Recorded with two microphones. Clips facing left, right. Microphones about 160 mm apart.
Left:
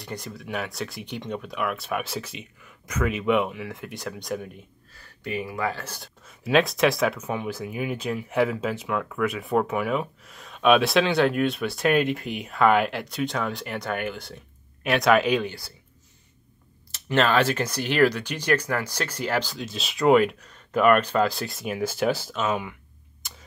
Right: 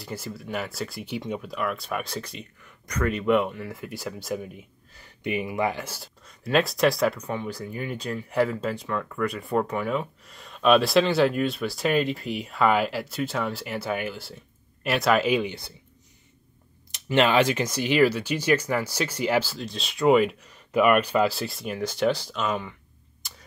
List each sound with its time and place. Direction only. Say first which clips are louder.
0.0 s speech: right 1 dB; 5° right (ahead or behind)
5.0 s speech: right 2 dB; 20° right (ahead or behind)
5.9 s speech: left 1 dB; centre (ahead or behind)
16.9 s speech: right 1 dB; 15° right (ahead or behind); by 22.8 s 5° left (ahead or behind)